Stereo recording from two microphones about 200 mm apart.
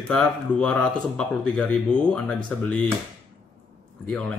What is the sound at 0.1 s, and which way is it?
Speech, 5° left (ahead or behind).